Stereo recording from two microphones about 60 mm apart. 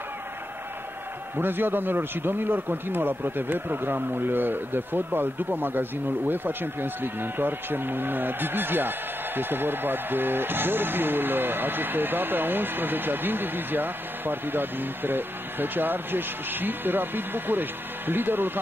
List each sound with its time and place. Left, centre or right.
1.3 s a man's voice: right